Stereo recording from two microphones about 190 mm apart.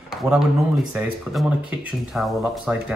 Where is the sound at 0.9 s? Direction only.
5° right (ahead or behind).